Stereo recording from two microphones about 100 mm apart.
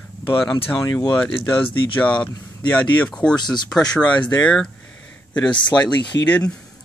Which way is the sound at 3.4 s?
45° left (ahead or behind).